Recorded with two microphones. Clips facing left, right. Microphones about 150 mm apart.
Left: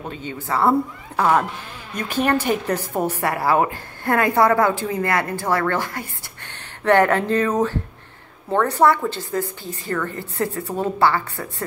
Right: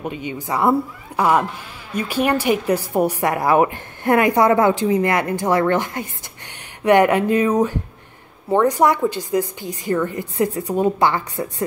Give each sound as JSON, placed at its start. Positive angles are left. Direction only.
{"t": 0.0, "sound": "a woman's voice", "side_deg": -15}